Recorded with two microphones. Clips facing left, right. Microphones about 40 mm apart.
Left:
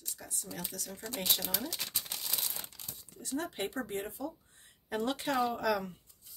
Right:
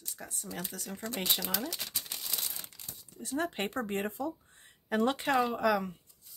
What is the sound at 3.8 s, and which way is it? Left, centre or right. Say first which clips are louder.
Speech: right 4 dB; right.